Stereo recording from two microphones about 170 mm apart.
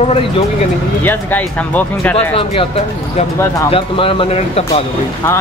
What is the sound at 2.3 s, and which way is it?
Speech, 35° left (ahead or behind).